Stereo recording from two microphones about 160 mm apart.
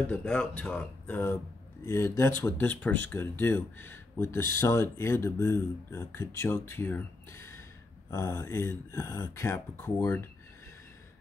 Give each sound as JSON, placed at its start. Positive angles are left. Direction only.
{"t": 0.0, "sound": "speech", "side_deg": 10}